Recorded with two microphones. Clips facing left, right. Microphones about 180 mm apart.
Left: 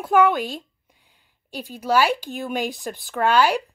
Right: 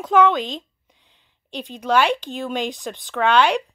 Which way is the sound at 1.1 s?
5° left (ahead or behind).